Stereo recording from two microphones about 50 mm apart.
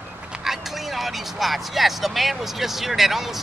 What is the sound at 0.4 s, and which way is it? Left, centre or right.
Speech, centre.